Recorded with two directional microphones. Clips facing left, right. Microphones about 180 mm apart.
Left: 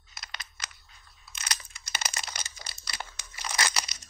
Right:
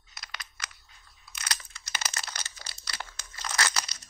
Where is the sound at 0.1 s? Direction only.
25° left (ahead or behind).